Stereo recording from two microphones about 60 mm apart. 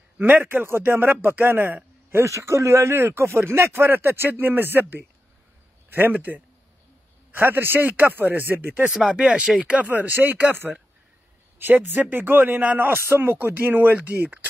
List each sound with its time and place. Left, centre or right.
0.2 s a man's voice: right
2.2 s a man's voice: right
7.3 s a man's voice: right
8.9 s speech: centre
9.8 s a man's voice: right